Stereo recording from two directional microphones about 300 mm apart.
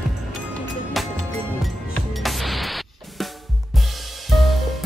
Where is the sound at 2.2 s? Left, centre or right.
Centre.